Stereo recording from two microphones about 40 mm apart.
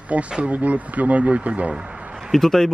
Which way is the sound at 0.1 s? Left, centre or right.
Right.